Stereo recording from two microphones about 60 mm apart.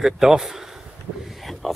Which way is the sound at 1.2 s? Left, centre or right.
Centre.